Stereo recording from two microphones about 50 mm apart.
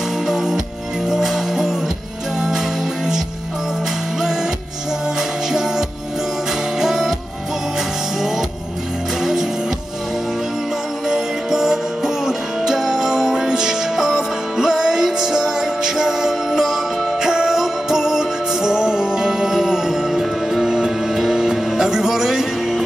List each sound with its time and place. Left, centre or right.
0.3 s music: centre
4.2 s music: centre
5.5 s music: centre
9.2 s music: centre
11.1 s music: centre